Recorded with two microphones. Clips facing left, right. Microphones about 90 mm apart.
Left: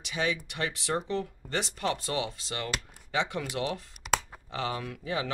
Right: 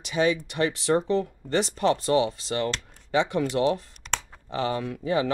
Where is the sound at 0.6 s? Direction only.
35° right (ahead or behind).